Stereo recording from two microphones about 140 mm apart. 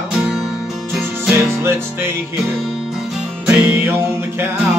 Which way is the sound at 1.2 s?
15° right (ahead or behind).